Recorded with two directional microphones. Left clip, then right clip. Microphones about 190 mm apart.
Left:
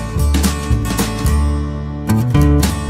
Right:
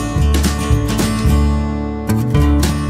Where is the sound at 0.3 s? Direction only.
Centre (ahead or behind).